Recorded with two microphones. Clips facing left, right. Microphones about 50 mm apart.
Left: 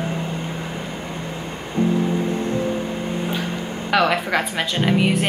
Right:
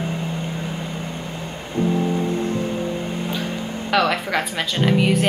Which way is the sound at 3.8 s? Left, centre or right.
Centre.